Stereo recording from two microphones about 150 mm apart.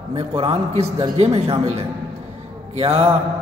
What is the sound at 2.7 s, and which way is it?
Mantra, 40° right (ahead or behind).